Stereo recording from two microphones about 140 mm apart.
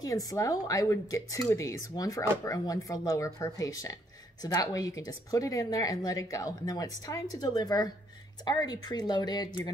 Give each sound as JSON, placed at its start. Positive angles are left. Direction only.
{"t": 0.0, "sound": "speech", "side_deg": 25}